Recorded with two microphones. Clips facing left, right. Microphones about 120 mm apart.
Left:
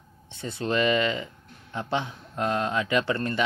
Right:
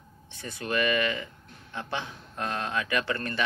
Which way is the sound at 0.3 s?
25° left (ahead or behind).